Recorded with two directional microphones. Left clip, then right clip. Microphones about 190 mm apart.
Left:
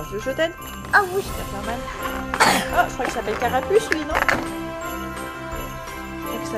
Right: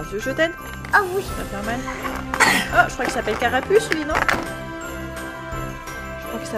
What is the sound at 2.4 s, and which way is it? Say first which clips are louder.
Speech: right 1 dB; 10° left (ahead or behind).